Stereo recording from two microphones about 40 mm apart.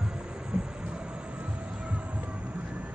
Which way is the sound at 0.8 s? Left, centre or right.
Right.